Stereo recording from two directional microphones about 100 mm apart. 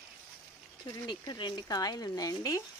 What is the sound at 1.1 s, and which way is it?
Speech, 50° left (ahead or behind).